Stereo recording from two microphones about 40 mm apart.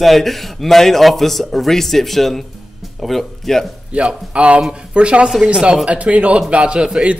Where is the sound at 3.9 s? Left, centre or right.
Right.